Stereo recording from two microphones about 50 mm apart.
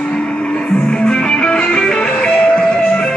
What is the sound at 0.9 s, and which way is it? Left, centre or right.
Music, centre.